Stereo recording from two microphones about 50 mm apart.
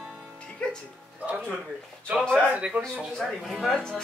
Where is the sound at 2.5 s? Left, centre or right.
Right.